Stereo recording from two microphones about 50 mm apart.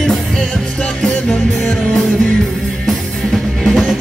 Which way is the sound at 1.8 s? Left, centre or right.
Centre.